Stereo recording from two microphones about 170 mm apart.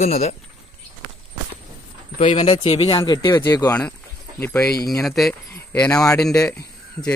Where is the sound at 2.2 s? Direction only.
35° left (ahead or behind).